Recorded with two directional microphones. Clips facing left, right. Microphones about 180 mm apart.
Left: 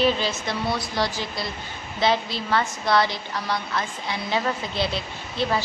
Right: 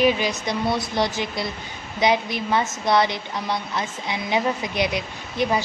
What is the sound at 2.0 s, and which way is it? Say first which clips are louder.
A woman's voice: right 2 dB; 15° right (ahead or behind).